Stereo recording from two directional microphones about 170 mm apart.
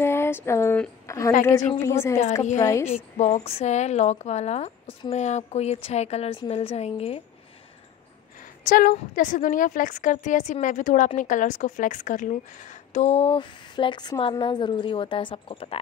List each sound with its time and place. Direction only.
0.0 s a woman's voice: 15° left (ahead or behind)
2.9 s a woman's voice: 40° left (ahead or behind)
8.6 s a woman's voice: 55° left (ahead or behind); by 15.8 s 35° left (ahead or behind)